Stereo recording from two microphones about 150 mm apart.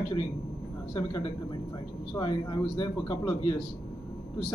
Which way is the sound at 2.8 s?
30° left (ahead or behind).